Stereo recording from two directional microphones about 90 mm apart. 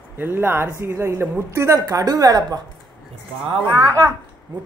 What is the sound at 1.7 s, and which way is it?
Speech, 45° right (ahead or behind).